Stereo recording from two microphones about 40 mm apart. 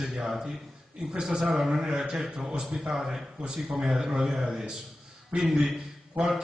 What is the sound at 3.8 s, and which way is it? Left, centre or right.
A man's voice, right.